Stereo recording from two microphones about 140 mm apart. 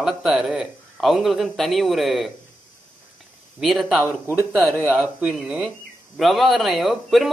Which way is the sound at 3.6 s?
Centre (ahead or behind).